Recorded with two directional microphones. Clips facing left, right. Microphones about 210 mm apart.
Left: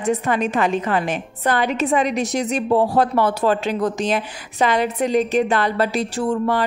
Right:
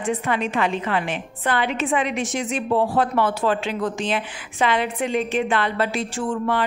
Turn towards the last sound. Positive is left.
turn(degrees=40)  # may be behind; listen again after turning